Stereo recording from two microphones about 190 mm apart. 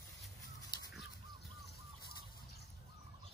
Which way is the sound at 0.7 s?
20° left (ahead or behind).